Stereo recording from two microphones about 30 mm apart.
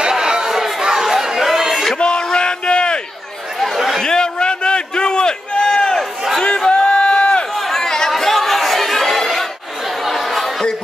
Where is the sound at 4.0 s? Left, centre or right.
Left.